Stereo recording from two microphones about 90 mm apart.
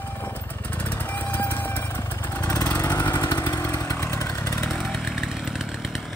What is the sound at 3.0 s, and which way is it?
Vehicle, 40° left (ahead or behind).